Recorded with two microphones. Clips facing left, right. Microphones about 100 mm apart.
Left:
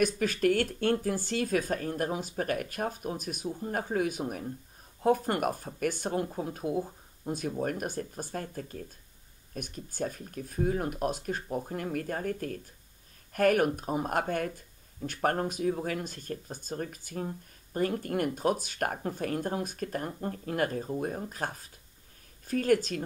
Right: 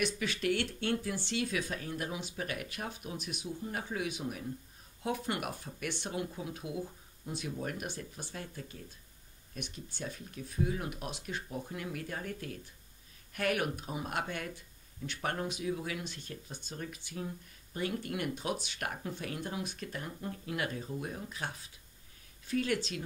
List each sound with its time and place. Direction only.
0.0 s speech: 45° left (ahead or behind)